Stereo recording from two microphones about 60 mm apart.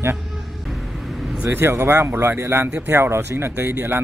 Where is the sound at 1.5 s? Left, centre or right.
Right.